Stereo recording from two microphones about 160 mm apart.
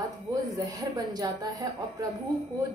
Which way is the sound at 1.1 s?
25° right (ahead or behind).